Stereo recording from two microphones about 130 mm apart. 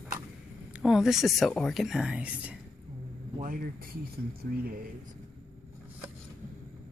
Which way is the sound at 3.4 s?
90° right.